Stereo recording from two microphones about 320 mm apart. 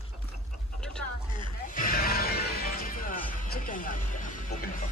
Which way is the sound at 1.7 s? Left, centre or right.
Left.